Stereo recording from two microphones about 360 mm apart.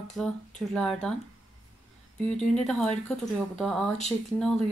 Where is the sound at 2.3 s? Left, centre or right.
Centre.